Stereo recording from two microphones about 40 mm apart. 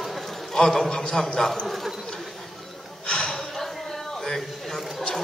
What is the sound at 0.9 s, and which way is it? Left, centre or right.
Chuckle, centre.